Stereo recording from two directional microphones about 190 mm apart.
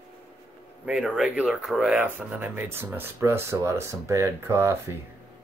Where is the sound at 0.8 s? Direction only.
5° right (ahead or behind).